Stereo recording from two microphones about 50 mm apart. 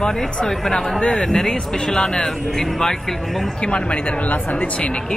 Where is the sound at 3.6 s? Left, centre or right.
Left.